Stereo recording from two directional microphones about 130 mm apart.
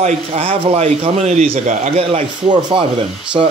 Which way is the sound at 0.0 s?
50° right (ahead or behind).